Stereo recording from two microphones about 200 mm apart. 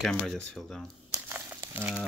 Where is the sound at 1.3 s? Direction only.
10° right (ahead or behind).